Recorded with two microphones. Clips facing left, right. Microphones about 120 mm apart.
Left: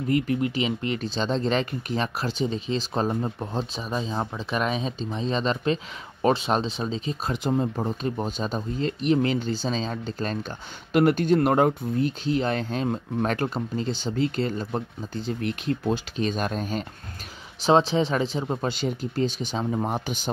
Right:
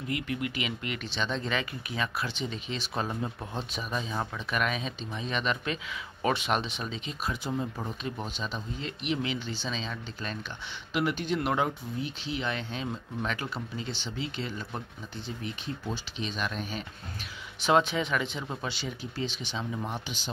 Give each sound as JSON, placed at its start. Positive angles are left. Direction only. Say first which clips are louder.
{"t": 0.1, "sound": "speech", "louder": "left 9 dB", "side_deg": 35}
{"t": 15.4, "sound": "speech", "louder": "left 10 dB", "side_deg": 65}
{"t": 16.2, "sound": "speech", "louder": "left 7 dB", "side_deg": 45}
{"t": 18.7, "sound": "speech", "louder": "left 9 dB", "side_deg": 45}